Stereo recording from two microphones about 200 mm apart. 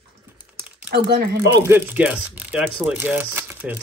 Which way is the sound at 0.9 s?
55° right (ahead or behind).